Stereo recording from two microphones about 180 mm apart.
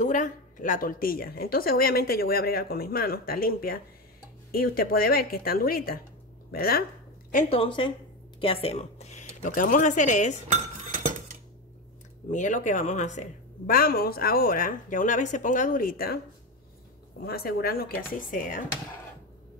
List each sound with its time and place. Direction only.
0.0 s a woman's voice: 45° left (ahead or behind)
7.3 s speech: 35° left (ahead or behind)
10.5 s chink: 40° right (ahead or behind)
12.3 s a woman's voice: 45° left (ahead or behind)
17.2 s a woman's voice: 60° left (ahead or behind)